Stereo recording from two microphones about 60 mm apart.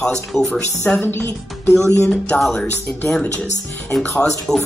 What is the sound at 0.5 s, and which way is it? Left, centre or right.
Speech, centre.